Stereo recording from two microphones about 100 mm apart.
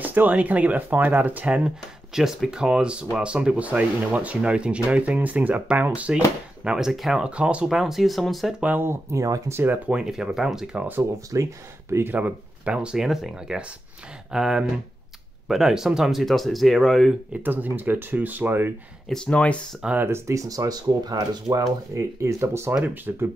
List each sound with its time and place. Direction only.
0.0 s speech: 15° right (ahead or behind)
2.1 s speech: 5° right (ahead or behind)
8.5 s speech: 15° right (ahead or behind)
9.1 s speech: 30° right (ahead or behind)
9.6 s speech: 20° right (ahead or behind)
9.9 s speech: 5° right (ahead or behind)
10.9 s speech: 25° right (ahead or behind); by 17.1 s centre (ahead or behind)
17.3 s speech: 15° right (ahead or behind)
19.0 s speech: 10° left (ahead or behind)
19.8 s speech: 15° right (ahead or behind)
20.1 s speech: 30° right (ahead or behind)